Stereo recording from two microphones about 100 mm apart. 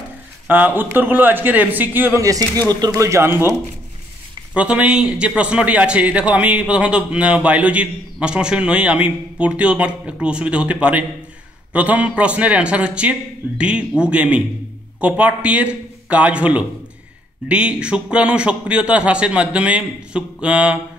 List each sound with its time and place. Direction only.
0.5 s a man's voice: 20° right (ahead or behind)
2.2 s a man's voice: 35° right (ahead or behind)
4.6 s speech: 10° right (ahead or behind)